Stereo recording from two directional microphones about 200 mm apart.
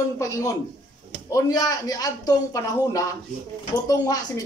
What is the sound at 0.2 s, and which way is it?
A man's voice, 15° left (ahead or behind).